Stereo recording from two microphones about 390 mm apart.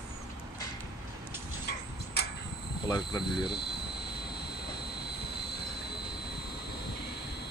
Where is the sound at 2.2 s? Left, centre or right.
Left.